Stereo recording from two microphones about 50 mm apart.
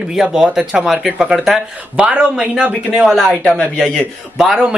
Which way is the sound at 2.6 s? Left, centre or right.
Right.